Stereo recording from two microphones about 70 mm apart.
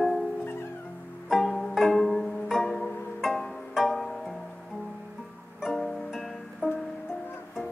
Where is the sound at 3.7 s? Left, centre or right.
Centre.